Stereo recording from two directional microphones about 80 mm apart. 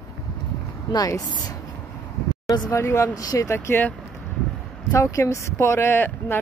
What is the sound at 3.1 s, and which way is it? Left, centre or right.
Speech, left.